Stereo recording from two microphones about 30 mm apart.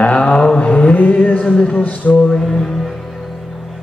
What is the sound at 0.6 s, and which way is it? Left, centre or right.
Mantra, left.